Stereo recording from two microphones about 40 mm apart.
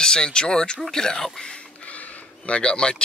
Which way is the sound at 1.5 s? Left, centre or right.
Left.